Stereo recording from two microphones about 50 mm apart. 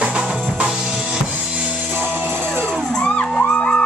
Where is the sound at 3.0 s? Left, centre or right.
Centre.